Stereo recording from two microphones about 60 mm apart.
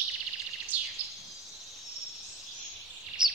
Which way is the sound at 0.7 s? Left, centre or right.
Right.